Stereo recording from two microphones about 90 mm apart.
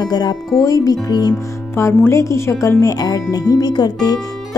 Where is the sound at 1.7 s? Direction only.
30° left (ahead or behind); by 4.1 s 50° left (ahead or behind).